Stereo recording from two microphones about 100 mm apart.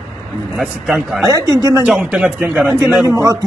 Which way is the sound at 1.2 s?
35° right (ahead or behind).